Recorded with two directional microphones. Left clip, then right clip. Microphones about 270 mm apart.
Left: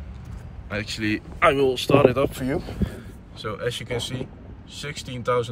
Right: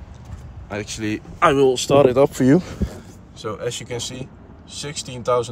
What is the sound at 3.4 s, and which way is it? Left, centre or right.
Speech, centre.